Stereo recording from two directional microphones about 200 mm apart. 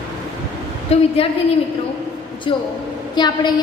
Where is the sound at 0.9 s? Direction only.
30° left (ahead or behind).